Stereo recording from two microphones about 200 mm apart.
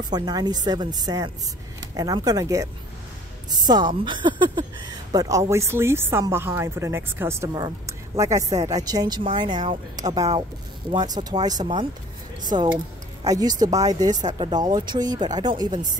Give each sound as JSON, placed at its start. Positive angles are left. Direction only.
{"t": 0.0, "sound": "speech", "side_deg": -20}
{"t": 12.7, "sound": "speech", "side_deg": -20}